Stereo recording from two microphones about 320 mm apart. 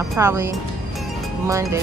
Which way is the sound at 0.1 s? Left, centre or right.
Centre.